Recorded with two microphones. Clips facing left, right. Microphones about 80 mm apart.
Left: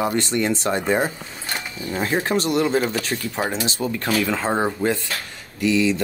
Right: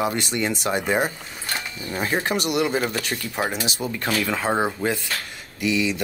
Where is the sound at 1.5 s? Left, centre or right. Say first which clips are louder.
Left 2 dB; left.